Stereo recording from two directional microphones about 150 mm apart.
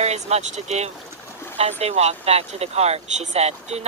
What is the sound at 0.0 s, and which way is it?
Speech, 45° right (ahead or behind).